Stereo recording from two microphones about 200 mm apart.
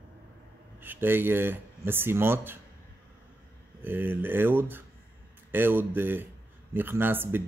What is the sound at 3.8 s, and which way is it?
Speech, 10° right (ahead or behind).